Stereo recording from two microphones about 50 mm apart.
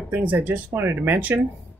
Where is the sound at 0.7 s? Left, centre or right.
Right.